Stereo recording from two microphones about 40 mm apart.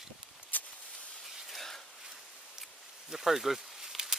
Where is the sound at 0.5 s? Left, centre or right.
Left.